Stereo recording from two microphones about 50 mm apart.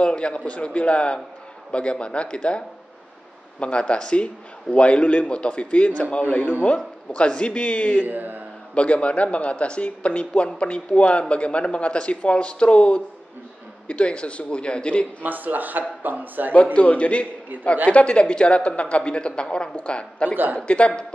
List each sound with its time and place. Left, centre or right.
0.0 s speech: left
6.2 s speech: left
7.1 s speech: left
8.1 s speech: right
8.7 s speech: left
15.2 s speech: right
16.7 s speech: left